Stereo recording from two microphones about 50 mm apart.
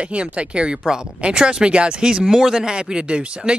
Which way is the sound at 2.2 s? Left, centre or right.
Centre.